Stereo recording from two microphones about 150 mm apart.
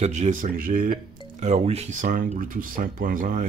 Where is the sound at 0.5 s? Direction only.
75° right (ahead or behind).